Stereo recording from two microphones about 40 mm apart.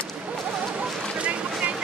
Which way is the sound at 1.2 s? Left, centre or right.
Right.